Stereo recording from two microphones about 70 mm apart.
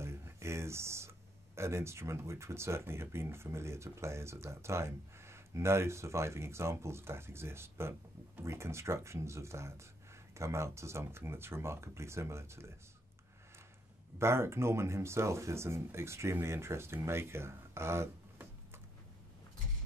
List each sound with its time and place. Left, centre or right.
0.0 s speech: right
14.1 s speech: right